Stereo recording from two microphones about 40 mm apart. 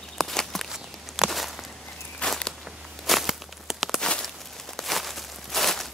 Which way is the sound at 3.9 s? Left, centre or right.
Centre.